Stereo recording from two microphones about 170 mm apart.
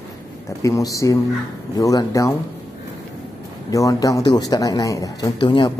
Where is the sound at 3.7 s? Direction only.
20° left (ahead or behind).